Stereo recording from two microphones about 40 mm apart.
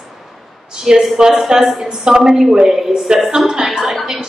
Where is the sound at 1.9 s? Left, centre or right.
Centre.